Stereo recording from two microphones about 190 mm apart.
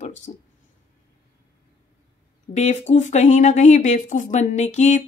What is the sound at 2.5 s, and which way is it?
Speech, 40° left (ahead or behind).